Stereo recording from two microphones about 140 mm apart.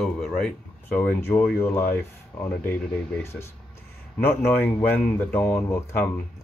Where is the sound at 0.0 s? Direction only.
5° left (ahead or behind).